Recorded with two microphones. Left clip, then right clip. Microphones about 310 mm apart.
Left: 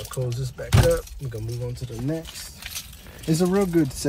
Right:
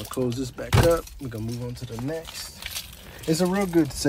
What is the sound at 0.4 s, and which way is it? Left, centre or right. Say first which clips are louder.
Speech: right 2 dB; right.